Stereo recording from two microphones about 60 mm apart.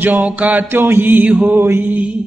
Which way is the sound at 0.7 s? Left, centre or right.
Right.